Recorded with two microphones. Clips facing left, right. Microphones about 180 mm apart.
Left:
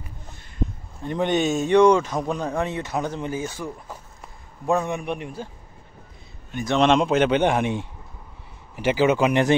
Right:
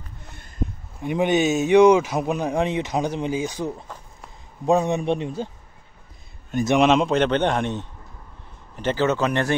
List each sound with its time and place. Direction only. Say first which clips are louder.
1.0 s speech: right 2 dB; 10° right (ahead or behind)
3.8 s a sound: left 1 dB; 5° left (ahead or behind)
4.6 s a man's voice: right 4 dB; 20° right (ahead or behind)
6.8 s a man's voice: left 1 dB; centre (ahead or behind); by 9.6 s 15° left (ahead or behind)